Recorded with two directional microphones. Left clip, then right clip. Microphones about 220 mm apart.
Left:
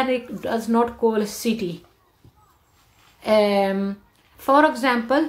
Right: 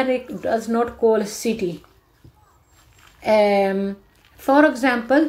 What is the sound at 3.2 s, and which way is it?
A woman's voice, centre (ahead or behind).